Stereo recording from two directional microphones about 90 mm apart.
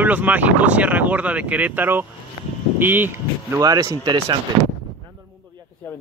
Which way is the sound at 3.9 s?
60° right (ahead or behind).